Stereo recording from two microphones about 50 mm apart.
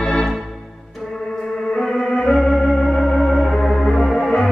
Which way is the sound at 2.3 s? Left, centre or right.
Centre.